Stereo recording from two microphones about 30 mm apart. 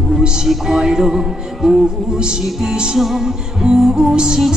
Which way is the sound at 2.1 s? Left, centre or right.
Right.